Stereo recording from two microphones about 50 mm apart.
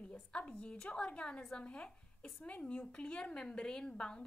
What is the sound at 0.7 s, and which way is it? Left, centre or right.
A woman's voice, centre.